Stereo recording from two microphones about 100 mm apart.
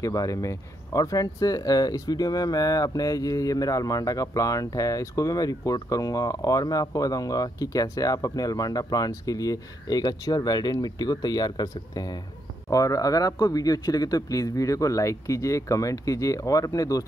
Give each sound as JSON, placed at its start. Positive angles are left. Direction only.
{"t": 0.0, "sound": "speech", "side_deg": 35}